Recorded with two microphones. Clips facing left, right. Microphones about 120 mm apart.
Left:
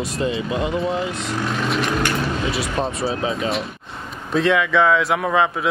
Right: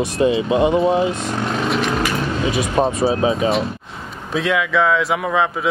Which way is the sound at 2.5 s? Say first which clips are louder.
Right 5 dB; 20° right (ahead or behind).